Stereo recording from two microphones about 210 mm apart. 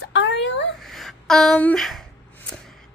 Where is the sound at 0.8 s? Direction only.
Centre (ahead or behind).